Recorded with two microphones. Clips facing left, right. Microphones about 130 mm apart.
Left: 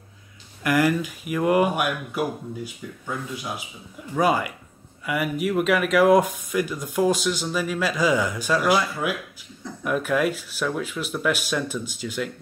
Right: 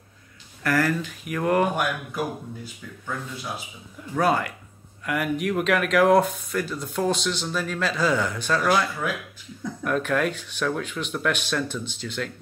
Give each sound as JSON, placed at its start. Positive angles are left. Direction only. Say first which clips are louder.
{"t": 0.7, "sound": "speech", "louder": "left 2 dB", "side_deg": 15}